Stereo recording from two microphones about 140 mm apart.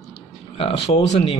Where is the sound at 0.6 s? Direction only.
40° left (ahead or behind).